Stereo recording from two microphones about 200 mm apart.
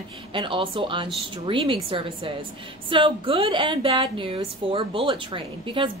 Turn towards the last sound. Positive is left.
turn(degrees=-25)  # may be behind; listen again after turning